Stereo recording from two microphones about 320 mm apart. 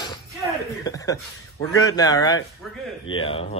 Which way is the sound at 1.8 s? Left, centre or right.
Centre.